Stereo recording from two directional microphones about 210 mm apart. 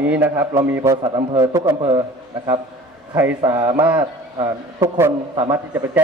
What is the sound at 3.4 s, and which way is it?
A man's voice, 20° right (ahead or behind).